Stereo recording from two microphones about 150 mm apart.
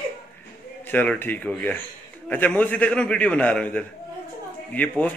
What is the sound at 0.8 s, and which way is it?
A man's voice, 10° left (ahead or behind).